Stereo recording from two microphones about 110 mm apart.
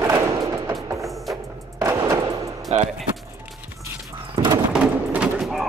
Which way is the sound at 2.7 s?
85° right.